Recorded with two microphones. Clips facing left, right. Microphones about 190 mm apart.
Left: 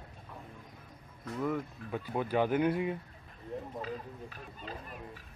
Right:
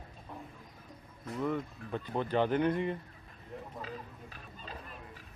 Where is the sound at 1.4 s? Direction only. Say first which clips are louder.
Even; 5° left (ahead or behind).